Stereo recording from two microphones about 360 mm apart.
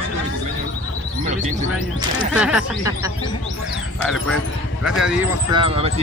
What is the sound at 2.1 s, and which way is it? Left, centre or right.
Speech, centre.